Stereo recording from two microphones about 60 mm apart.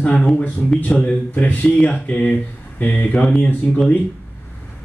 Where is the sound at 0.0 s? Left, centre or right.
Centre.